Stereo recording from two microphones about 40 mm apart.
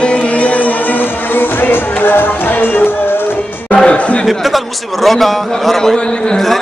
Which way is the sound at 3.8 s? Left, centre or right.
Left.